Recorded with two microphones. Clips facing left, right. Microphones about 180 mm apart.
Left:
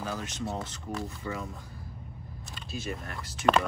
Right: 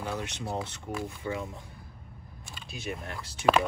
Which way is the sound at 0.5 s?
Centre (ahead or behind).